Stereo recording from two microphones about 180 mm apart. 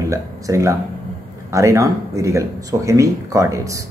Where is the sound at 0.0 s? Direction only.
15° right (ahead or behind).